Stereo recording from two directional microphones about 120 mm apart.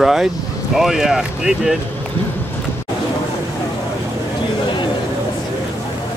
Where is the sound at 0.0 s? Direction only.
5° right (ahead or behind).